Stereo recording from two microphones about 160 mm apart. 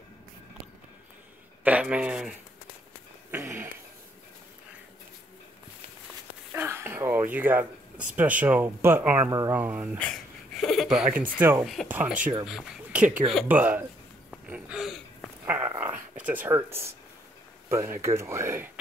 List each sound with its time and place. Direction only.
1.6 s speech: 10° right (ahead or behind)
3.3 s a sound: 15° right (ahead or behind)
6.5 s throat clearing: 15° right (ahead or behind)
8.2 s speech: 10° right (ahead or behind)
9.9 s speech: 5° left (ahead or behind); by 11.6 s 10° right (ahead or behind)
11.6 s a sound: centre (ahead or behind)
11.9 s speech: 10° right (ahead or behind)
14.5 s a sound: 5° right (ahead or behind)
15.4 s dog: 10° right (ahead or behind)
16.3 s speech: 10° right (ahead or behind)